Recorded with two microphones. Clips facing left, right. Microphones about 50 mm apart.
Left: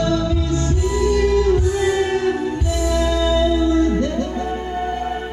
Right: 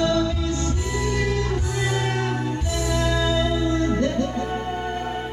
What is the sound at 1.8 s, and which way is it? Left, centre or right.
Music, centre.